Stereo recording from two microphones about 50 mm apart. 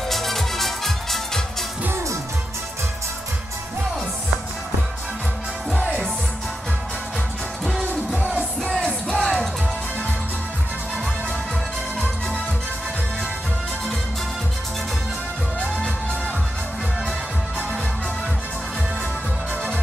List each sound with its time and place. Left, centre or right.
0.1 s music: centre
9.1 s music: centre